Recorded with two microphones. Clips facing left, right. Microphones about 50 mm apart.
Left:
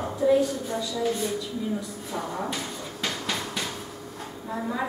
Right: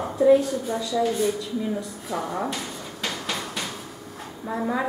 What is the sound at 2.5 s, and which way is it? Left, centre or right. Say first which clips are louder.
Dog: even; centre.